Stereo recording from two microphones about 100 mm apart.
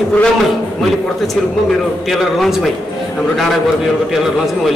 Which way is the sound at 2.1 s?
Centre (ahead or behind).